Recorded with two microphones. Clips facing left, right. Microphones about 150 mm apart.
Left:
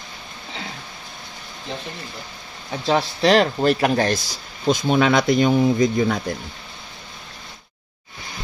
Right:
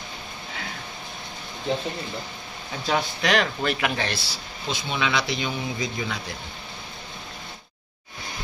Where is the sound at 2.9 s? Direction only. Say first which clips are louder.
Left 6 dB; 35° left (ahead or behind); by 6.2 s 50° left (ahead or behind).